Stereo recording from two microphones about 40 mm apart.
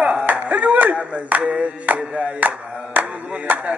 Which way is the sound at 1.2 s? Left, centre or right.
Right.